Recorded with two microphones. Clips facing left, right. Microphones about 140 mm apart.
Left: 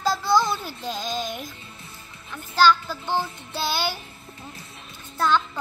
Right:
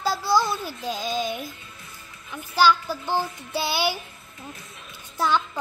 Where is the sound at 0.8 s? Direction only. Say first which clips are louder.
Right 2 dB; 5° right (ahead or behind).